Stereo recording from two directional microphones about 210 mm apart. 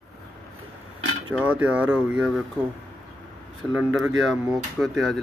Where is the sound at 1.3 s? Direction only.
5° right (ahead or behind).